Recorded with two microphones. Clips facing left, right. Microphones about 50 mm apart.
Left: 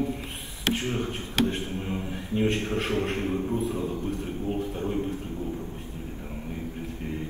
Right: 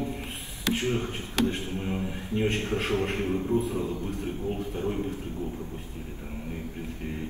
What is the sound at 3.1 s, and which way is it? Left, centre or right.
Speech, left.